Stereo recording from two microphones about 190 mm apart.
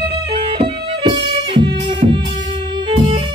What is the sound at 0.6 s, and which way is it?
Music, 25° right (ahead or behind).